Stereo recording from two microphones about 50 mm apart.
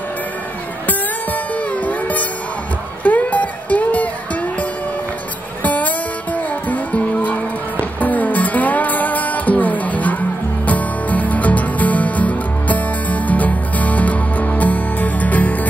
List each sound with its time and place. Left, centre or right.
0.8 s music: left
5.6 s music: left